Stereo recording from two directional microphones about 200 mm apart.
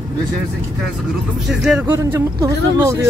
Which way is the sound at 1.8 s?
15° right (ahead or behind).